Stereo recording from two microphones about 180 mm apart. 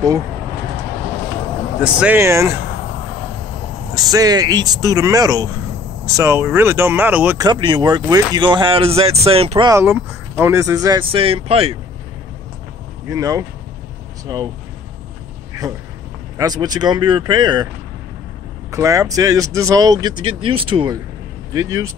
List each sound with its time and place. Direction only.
1.8 s speech: 5° right (ahead or behind)
3.9 s speech: 20° right (ahead or behind)
7.3 s speech: 25° right (ahead or behind)
9.8 s speech: 10° right (ahead or behind); by 11.7 s 30° right (ahead or behind)
13.1 s speech: 20° right (ahead or behind)
15.6 s speech: 20° right (ahead or behind)
18.7 s speech: 15° right (ahead or behind)